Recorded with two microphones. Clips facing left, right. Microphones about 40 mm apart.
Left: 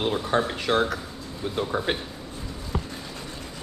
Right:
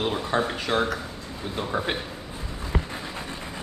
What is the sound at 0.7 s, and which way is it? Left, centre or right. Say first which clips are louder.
Speech: left 2 dB; left.